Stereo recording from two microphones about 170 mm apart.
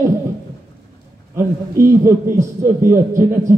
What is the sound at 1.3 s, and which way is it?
A man's voice, 15° right (ahead or behind).